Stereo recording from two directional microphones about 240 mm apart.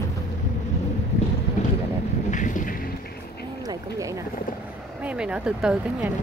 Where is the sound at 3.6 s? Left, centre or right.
Centre.